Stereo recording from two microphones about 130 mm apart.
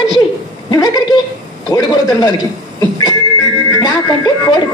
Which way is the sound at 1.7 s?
30° left (ahead or behind).